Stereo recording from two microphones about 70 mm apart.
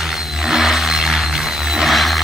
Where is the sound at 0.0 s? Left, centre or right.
Centre.